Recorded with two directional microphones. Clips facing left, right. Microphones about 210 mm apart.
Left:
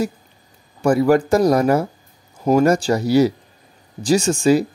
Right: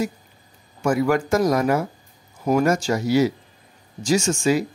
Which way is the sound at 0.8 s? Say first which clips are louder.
Left 5 dB; 35° left (ahead or behind).